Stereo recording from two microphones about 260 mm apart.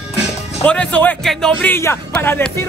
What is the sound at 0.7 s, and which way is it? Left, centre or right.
Speech, centre.